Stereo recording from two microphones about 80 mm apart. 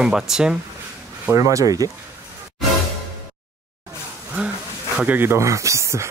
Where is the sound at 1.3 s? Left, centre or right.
Right.